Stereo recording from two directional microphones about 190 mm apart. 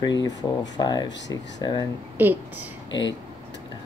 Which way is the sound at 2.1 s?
10° right (ahead or behind).